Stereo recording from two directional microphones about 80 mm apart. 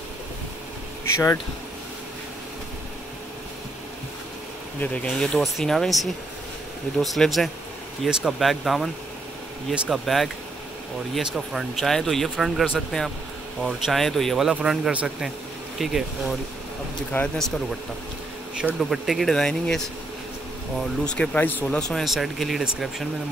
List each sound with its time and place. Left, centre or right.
1.1 s speech: left
4.7 s speech: centre
14.5 s a man's voice: centre
15.8 s speech: centre
17.1 s speech: left
18.8 s speech: centre; by 21.6 s left
21.6 s a man's voice: centre